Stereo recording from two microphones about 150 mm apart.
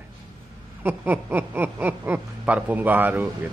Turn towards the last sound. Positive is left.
turn(degrees=-10)  # may be behind; listen again after turning